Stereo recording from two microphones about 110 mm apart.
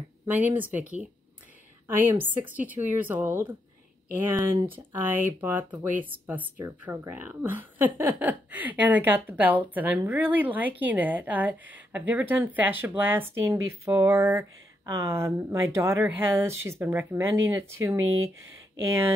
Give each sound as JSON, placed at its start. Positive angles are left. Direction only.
{"t": 0.3, "sound": "a woman's voice", "side_deg": -15}